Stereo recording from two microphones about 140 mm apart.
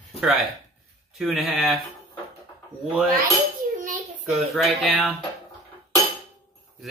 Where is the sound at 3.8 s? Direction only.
70° right (ahead or behind).